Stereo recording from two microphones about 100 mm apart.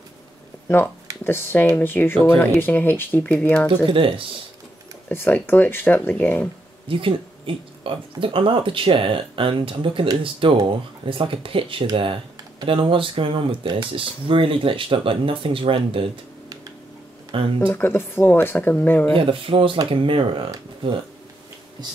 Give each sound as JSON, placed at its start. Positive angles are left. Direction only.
{"t": 1.2, "sound": "speech", "side_deg": 20}
{"t": 3.8, "sound": "speech", "side_deg": -60}
{"t": 5.1, "sound": "speech", "side_deg": 20}
{"t": 6.9, "sound": "speech", "side_deg": -60}
{"t": 17.6, "sound": "speech", "side_deg": 20}
{"t": 19.1, "sound": "speech", "side_deg": -65}